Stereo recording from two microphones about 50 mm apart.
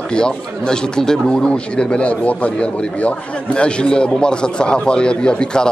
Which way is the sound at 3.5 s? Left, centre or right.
Centre.